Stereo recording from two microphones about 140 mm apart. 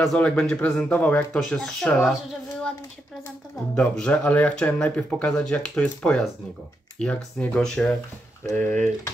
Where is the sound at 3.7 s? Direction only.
10° left (ahead or behind).